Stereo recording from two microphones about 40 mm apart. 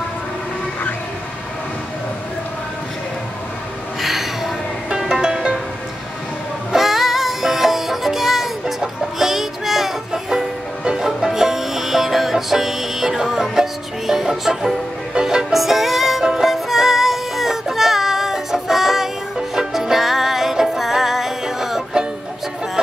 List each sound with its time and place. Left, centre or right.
4.0 s a sound: centre
4.8 s music: centre
6.7 s music: centre
15.5 s music: centre